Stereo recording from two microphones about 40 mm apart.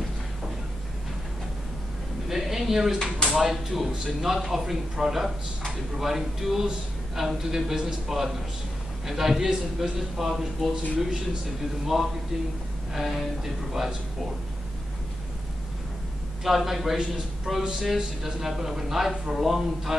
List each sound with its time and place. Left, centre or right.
2.2 s a sound: centre
3.3 s a man's voice: centre
11.8 s a man's voice: centre
16.4 s a man's voice: centre